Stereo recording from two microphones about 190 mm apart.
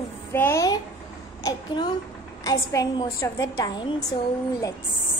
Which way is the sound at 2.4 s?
20° left (ahead or behind).